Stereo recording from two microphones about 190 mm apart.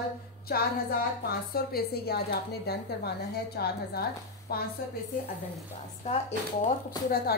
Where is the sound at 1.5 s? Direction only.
55° left (ahead or behind).